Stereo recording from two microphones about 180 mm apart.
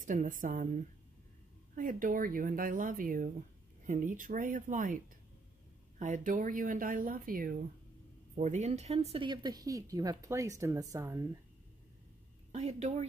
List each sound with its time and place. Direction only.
0.0 s speech: 45° right (ahead or behind)
1.8 s speech: 50° right (ahead or behind)
8.4 s speech: 40° right (ahead or behind); by 11.2 s 20° right (ahead or behind)
12.5 s a woman's voice: 40° right (ahead or behind)